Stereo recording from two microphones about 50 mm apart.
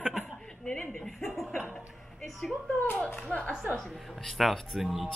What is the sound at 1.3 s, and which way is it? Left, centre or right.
Speech, centre.